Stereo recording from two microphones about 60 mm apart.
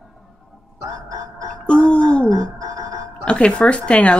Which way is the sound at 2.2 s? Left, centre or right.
Right.